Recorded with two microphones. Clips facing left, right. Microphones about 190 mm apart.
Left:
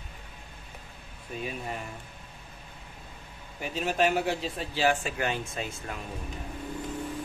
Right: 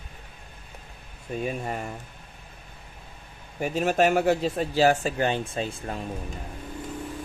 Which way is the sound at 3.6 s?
45° right (ahead or behind).